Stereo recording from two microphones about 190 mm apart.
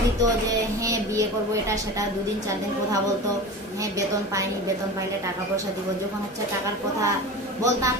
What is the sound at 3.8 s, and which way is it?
Speech, 15° right (ahead or behind).